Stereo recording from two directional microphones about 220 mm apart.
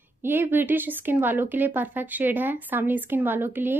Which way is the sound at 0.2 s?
10° right (ahead or behind).